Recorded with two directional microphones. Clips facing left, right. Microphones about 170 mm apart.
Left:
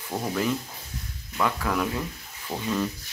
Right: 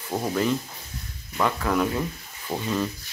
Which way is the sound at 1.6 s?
5° right (ahead or behind).